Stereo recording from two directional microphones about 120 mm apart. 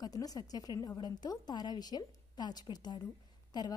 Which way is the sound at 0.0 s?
30° left (ahead or behind).